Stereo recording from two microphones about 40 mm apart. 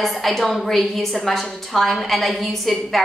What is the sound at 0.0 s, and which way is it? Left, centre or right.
A woman's voice, centre.